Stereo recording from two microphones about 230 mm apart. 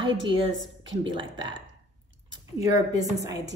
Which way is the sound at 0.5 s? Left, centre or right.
Right.